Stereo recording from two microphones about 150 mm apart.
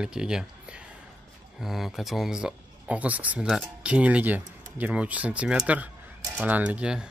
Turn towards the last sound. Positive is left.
turn(degrees=-5)  # may be behind; listen again after turning